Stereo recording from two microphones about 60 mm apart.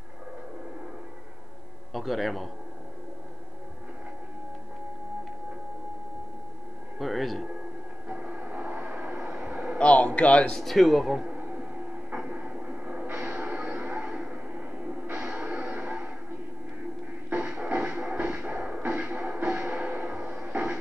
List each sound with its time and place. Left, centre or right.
2.0 s a man's voice: centre
7.0 s speech: centre
8.1 s vehicle: centre
9.8 s speech: centre
10.6 s a man's voice: centre
11.2 s train: right
13.4 s music: right
14.1 s a sound: right
15.4 s music: right
17.3 s a sound: right
17.7 s music: centre
18.1 s music: right
20.2 s a sound: right